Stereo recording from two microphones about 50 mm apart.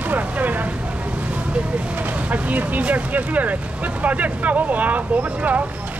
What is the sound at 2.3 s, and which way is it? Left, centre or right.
Speech, right.